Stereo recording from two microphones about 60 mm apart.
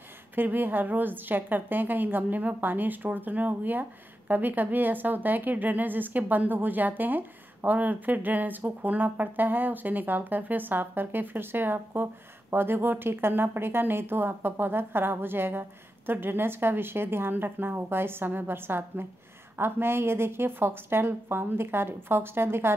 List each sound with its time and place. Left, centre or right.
0.4 s a woman's voice: right